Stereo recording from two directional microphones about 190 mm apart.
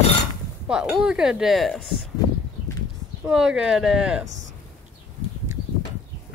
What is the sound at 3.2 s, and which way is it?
A woman's voice, 5° right (ahead or behind).